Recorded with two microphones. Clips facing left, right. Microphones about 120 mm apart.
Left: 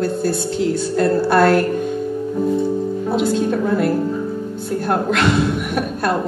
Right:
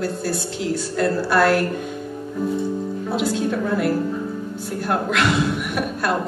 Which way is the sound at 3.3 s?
50° left (ahead or behind).